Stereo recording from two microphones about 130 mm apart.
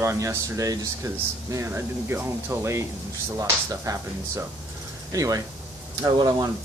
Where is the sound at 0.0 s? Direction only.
20° right (ahead or behind).